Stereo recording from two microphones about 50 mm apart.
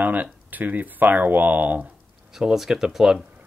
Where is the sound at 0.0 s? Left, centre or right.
Right.